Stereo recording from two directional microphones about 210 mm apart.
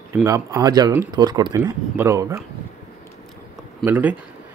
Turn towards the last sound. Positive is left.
turn(degrees=-10)  # may be behind; listen again after turning